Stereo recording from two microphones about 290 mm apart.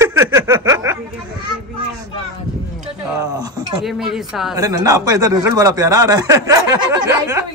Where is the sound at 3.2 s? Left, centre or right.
Centre.